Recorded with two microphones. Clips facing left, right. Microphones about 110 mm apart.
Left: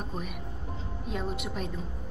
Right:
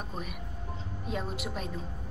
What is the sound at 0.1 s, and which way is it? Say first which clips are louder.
Speech: left 2 dB; centre (ahead or behind).